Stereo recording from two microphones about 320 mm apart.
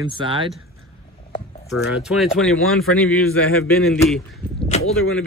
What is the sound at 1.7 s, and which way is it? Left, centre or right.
Speech, centre.